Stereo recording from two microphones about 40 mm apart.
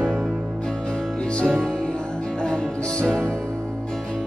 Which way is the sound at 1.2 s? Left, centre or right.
Left.